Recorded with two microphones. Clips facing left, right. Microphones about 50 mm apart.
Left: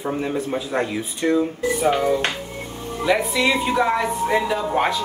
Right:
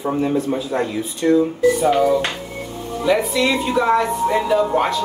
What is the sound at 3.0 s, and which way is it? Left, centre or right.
Speech, centre.